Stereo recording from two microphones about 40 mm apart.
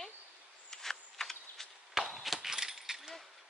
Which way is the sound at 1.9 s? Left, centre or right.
Centre.